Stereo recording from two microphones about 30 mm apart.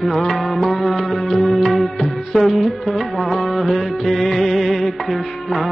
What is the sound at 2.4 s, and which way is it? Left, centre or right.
Music, centre.